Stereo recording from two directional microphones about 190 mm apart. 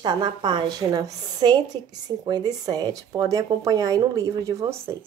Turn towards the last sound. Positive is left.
turn(degrees=-15)  # may be behind; listen again after turning